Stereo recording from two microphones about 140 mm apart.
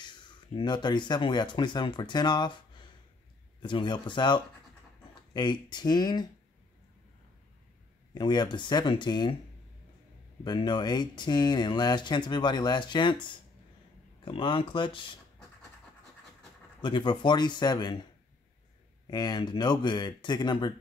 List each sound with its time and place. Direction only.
0.0 s speech: 35° left (ahead or behind)
3.6 s speech: 35° left (ahead or behind)
8.1 s speech: 30° left (ahead or behind)
10.4 s speech: 30° left (ahead or behind)
16.8 s speech: 35° left (ahead or behind)
19.0 s speech: 30° left (ahead or behind)